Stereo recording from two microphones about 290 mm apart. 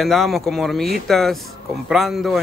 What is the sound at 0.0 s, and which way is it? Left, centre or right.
Speech, centre.